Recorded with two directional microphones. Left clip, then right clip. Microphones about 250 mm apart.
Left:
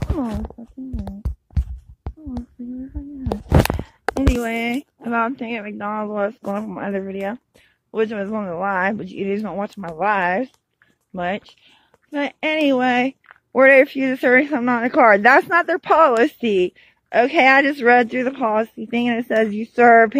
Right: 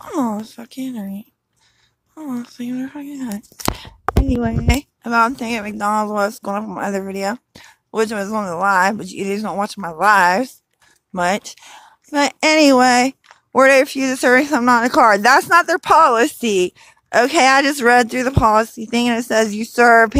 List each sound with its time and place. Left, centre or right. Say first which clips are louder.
0.6 s a woman's voice: right 5 dB; right
2.9 s speech: right 5 dB; right
4.4 s a woman's voice: right 2 dB; centre
13.5 s speech: even; centre